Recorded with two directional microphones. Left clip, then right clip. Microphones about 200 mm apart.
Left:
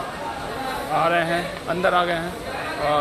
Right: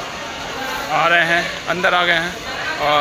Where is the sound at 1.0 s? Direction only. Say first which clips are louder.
Right 6 dB; centre (ahead or behind).